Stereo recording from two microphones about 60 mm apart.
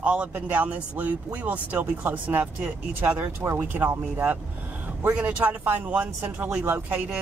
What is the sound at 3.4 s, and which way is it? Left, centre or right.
Speech, right.